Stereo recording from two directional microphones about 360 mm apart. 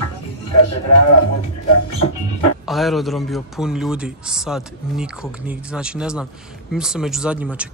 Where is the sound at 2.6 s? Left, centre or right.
Centre.